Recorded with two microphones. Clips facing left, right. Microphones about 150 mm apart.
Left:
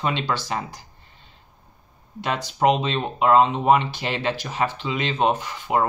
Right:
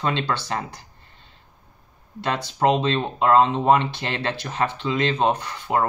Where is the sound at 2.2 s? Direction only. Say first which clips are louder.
Even; 10° left (ahead or behind).